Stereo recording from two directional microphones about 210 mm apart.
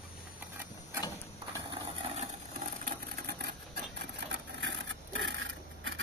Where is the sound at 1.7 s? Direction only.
30° right (ahead or behind); by 3.5 s 50° right (ahead or behind).